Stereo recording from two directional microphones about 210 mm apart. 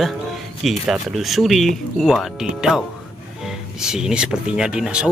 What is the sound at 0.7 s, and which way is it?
Speech, centre (ahead or behind).